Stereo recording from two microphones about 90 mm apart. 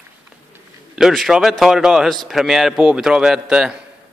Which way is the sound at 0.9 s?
Centre (ahead or behind).